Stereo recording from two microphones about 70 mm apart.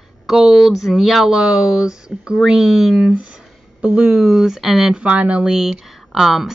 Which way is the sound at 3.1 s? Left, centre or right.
Centre.